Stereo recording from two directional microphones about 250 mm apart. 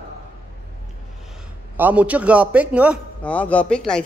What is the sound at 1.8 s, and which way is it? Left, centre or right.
A man's voice, centre.